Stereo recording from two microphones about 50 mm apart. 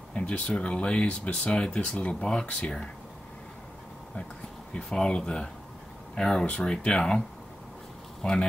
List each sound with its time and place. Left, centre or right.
0.1 s speech: left
4.7 s speech: centre
8.2 s speech: centre